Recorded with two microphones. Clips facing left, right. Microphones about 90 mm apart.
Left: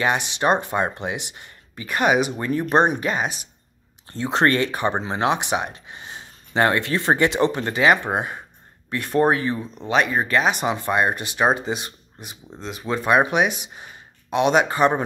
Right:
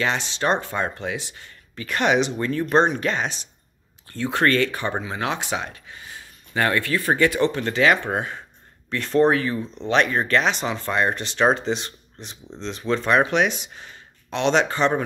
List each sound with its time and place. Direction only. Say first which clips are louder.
0.0 s speech: left 2 dB; 15° left (ahead or behind)
4.1 s speech: left 1 dB; 25° left (ahead or behind)
9.8 s speech: right 1 dB; 10° left (ahead or behind)